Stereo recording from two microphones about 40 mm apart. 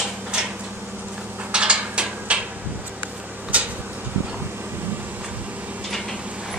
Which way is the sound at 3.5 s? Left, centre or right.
Right.